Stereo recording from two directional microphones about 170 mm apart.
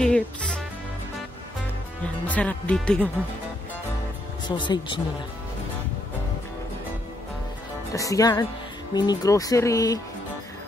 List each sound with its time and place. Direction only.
0.0 s music: 5° left (ahead or behind)
2.2 s speech: 10° left (ahead or behind)
4.5 s speech: 30° left (ahead or behind)
7.9 s speech: 20° left (ahead or behind)